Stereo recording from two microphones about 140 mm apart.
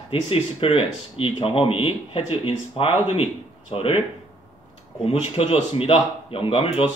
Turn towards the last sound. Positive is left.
turn(degrees=40)  # may be behind; listen again after turning